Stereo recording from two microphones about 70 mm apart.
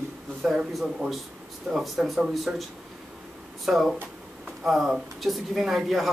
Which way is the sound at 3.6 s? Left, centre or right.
Centre.